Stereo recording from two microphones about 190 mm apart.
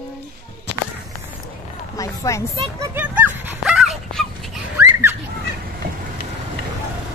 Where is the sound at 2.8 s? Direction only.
10° right (ahead or behind).